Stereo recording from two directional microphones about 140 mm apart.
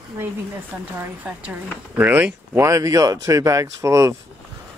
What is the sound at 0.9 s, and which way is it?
Speech, 10° right (ahead or behind).